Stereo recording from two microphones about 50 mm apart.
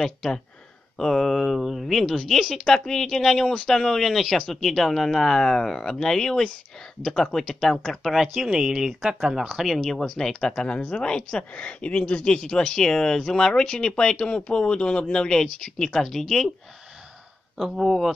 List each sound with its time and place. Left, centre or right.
0.0 s speech: centre
8.1 s speech: centre
9.8 s speech: centre
12.4 s speech: centre
17.6 s speech: centre